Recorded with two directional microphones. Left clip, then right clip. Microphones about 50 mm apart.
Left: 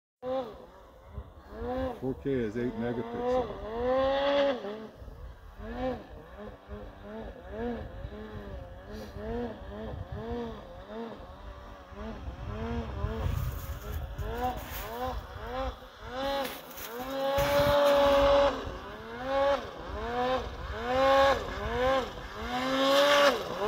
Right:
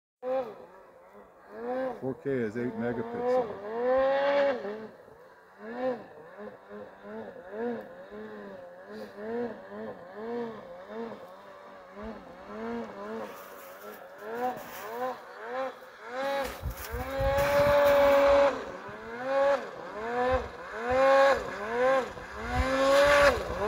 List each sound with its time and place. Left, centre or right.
0.2 s a sound: right
1.6 s a sound: right
2.7 s cattle: right
3.3 s vehicle: right; by 13.4 s centre
13.8 s vehicle: right
16.9 s vehicle: right
17.6 s vehicle: right
18.0 s vehicle: right